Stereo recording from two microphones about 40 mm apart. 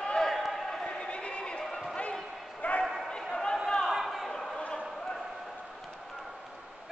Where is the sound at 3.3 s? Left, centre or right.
Centre.